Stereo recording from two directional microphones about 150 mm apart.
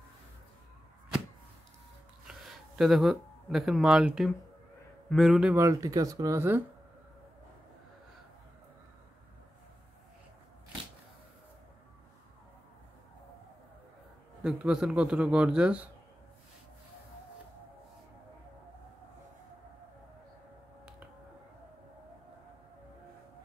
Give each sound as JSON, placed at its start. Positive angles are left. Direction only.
{"t": 2.2, "sound": "speech", "side_deg": -5}
{"t": 5.6, "sound": "speech", "side_deg": -20}
{"t": 14.4, "sound": "a man's voice", "side_deg": -5}